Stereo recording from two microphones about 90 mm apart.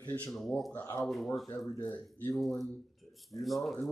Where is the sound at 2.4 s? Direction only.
Centre (ahead or behind).